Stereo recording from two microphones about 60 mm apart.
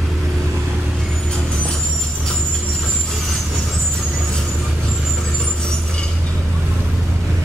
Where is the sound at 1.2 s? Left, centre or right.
Centre.